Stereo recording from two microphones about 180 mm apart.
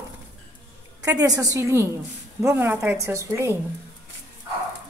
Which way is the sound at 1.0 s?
20° right (ahead or behind).